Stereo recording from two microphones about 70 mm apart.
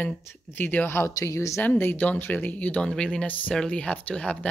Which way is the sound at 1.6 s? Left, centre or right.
Left.